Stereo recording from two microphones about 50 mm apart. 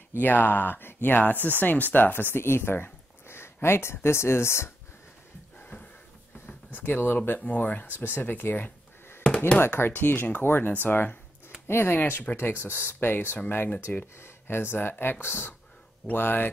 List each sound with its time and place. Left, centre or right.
0.1 s speech: left
5.6 s a sound: left
6.4 s speech: left